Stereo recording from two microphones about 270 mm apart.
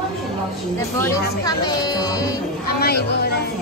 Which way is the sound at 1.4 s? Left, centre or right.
Centre.